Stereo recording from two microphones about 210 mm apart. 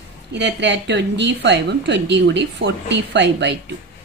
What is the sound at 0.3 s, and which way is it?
Speech, 55° right (ahead or behind).